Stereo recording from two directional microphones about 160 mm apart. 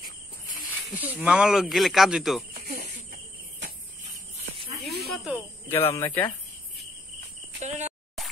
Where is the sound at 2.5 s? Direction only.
60° right (ahead or behind).